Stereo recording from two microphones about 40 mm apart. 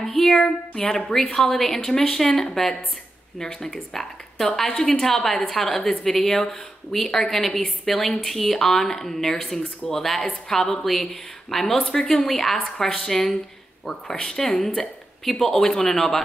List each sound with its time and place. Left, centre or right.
0.0 s speech: centre